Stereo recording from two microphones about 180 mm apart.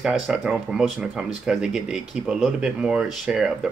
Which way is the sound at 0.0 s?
Centre (ahead or behind).